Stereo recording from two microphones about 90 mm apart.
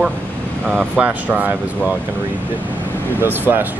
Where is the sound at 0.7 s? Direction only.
15° right (ahead or behind).